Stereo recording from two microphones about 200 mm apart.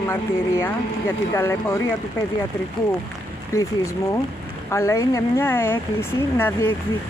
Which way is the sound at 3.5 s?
15° left (ahead or behind).